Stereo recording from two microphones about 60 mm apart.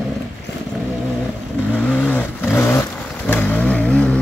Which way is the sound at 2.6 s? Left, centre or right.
Left.